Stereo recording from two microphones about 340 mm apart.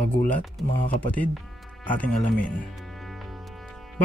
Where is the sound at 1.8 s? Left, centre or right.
Centre.